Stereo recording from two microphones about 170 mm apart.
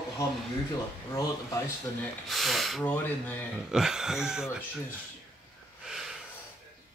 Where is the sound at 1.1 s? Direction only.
15° left (ahead or behind).